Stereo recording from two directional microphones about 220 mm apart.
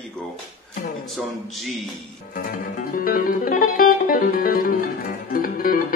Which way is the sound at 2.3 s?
40° left (ahead or behind).